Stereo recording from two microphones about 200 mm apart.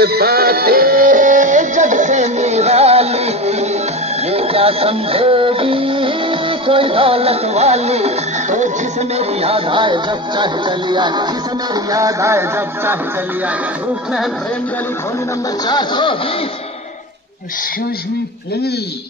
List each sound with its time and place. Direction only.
0.0 s music: 50° right (ahead or behind); by 8.6 s 35° right (ahead or behind)
9.1 s speech: 30° right (ahead or behind)
11.7 s music: 15° right (ahead or behind)
15.6 s speech: 20° left (ahead or behind)